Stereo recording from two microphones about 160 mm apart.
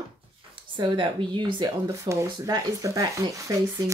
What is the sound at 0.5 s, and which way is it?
Speech, 30° right (ahead or behind).